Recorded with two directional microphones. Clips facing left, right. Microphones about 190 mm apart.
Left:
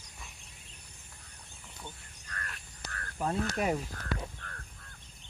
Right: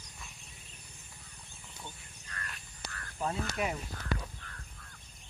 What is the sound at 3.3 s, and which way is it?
Speech, 40° left (ahead or behind).